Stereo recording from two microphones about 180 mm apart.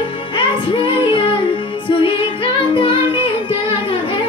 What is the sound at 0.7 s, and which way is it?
Music, 30° left (ahead or behind).